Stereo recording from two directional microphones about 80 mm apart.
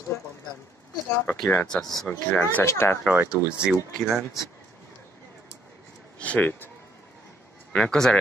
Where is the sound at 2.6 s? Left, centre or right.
Left.